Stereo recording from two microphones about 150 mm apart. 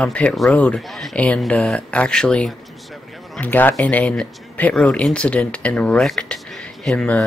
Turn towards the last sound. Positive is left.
turn(degrees=5)  # may be behind; listen again after turning